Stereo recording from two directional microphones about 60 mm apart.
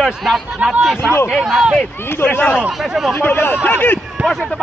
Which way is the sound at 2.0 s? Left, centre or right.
Left.